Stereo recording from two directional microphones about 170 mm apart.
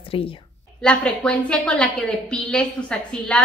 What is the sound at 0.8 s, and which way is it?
A woman's voice, 5° left (ahead or behind).